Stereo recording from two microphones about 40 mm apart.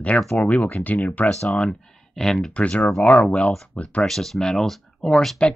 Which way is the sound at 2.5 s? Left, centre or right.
Left.